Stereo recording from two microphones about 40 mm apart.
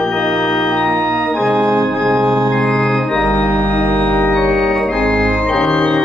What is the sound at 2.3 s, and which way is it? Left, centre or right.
Organ, centre.